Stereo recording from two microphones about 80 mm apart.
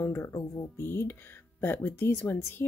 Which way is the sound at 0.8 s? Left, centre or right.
Left.